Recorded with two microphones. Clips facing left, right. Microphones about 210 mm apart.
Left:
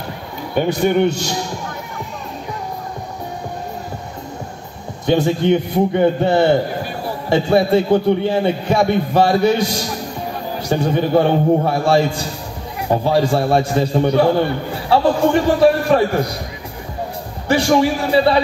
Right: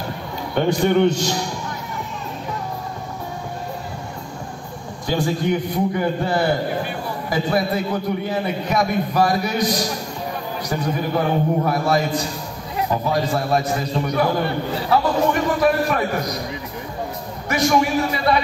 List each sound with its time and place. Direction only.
0.6 s a man's voice: 10° left (ahead or behind)
5.0 s a man's voice: 25° left (ahead or behind)
17.5 s a man's voice: 30° left (ahead or behind)